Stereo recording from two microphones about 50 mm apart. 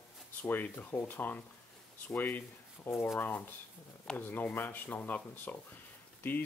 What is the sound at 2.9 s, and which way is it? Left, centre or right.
Speech, left.